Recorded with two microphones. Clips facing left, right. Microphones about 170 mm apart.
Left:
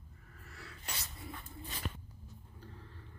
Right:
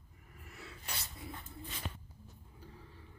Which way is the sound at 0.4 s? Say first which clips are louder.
Right 2 dB; 20° right (ahead or behind).